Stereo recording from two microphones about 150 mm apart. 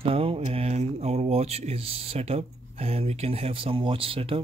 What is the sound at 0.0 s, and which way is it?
Speech, 40° right (ahead or behind).